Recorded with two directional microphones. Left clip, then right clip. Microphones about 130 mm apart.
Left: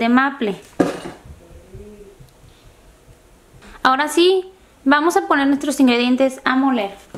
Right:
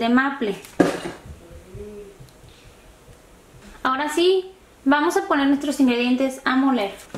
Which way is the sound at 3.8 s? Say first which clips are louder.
Left 5 dB; 45° left (ahead or behind).